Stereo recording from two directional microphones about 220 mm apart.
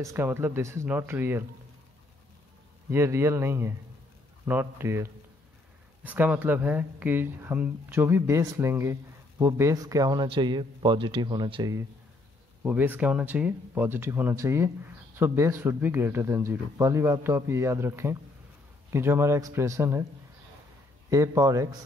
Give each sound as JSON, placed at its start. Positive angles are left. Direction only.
{"t": 0.0, "sound": "speech", "side_deg": -10}
{"t": 2.9, "sound": "speech", "side_deg": -10}
{"t": 12.6, "sound": "speech", "side_deg": -5}
{"t": 21.1, "sound": "speech", "side_deg": -15}